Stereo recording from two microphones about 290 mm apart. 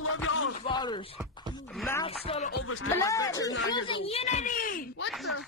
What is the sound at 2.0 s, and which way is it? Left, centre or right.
Speech, centre.